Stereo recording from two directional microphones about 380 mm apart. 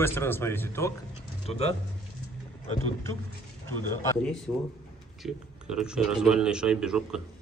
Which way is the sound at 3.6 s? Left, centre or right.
Centre.